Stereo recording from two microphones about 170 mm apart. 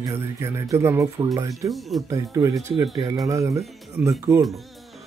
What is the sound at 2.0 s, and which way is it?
Speech, 20° right (ahead or behind).